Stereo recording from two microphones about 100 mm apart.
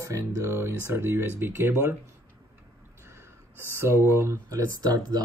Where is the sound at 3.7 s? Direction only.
25° right (ahead or behind).